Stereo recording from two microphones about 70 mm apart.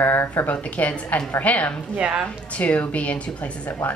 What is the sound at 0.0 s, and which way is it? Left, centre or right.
Speech, left.